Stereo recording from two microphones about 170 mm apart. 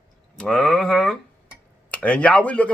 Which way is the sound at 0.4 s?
5° left (ahead or behind).